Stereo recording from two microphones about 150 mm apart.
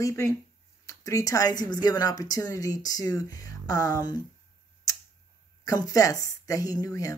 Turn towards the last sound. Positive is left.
turn(degrees=20)  # may be behind; listen again after turning